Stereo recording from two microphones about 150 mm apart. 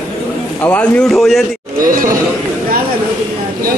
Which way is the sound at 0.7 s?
10° left (ahead or behind).